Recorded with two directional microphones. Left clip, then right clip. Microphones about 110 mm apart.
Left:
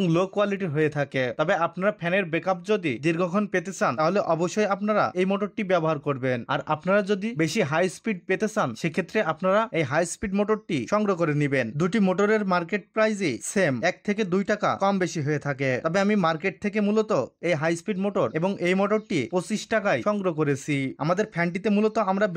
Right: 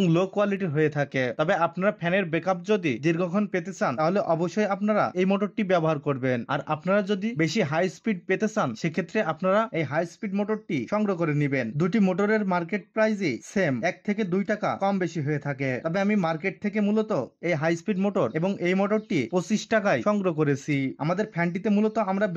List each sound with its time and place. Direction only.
0.0 s speech: 20° left (ahead or behind)
6.7 s speech: 25° left (ahead or behind)
9.9 s speech: 40° left (ahead or behind); by 18.4 s 15° left (ahead or behind)
18.4 s speech: 25° left (ahead or behind)
19.3 s speech: 10° left (ahead or behind); by 22.3 s 25° left (ahead or behind)